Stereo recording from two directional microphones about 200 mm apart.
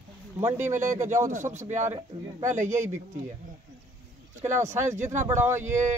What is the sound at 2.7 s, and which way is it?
Speech, 15° right (ahead or behind).